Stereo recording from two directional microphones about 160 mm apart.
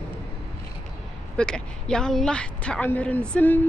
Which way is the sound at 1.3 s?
5° left (ahead or behind).